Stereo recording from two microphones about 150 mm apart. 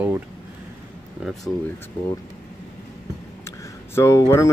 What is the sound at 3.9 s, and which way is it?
Speech, 20° left (ahead or behind).